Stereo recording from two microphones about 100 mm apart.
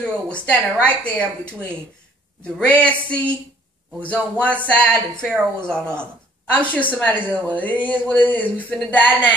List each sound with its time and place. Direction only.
0.0 s speech: 10° left (ahead or behind)
2.6 s a woman's voice: 15° left (ahead or behind)